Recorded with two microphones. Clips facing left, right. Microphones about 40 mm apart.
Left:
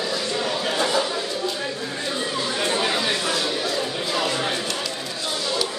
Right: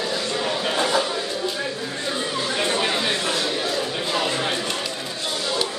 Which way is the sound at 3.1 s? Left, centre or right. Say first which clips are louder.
Even; right.